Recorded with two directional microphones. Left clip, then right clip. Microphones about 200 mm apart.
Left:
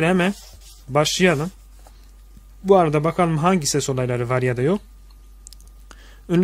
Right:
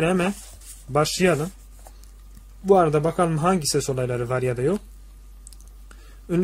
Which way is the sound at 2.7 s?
35° left (ahead or behind).